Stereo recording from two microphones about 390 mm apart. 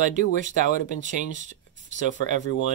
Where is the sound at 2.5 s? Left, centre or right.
Left.